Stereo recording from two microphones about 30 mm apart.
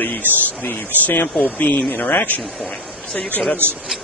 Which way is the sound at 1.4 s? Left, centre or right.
Left.